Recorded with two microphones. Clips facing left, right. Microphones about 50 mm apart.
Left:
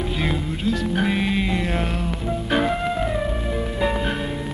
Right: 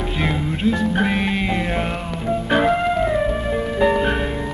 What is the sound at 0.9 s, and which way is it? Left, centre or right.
Music, right.